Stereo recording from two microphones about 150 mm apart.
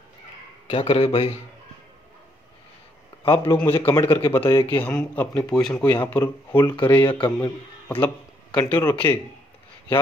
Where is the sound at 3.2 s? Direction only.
40° left (ahead or behind).